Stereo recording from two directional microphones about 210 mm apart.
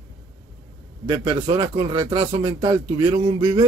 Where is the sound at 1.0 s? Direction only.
15° right (ahead or behind).